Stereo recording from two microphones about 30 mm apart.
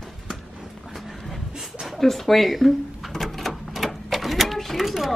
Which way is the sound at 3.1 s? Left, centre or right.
Centre.